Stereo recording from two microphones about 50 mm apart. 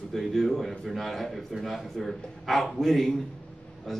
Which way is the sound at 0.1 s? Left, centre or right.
Centre.